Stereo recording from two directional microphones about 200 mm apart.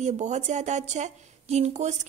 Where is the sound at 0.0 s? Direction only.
35° right (ahead or behind).